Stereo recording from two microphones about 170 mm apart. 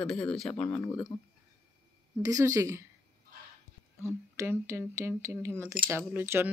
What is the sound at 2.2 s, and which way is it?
Speech, 20° right (ahead or behind).